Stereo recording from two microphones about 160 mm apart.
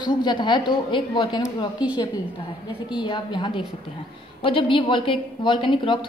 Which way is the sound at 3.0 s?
30° left (ahead or behind).